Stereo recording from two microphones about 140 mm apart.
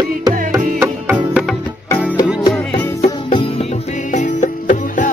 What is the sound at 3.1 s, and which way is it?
Music, 35° left (ahead or behind).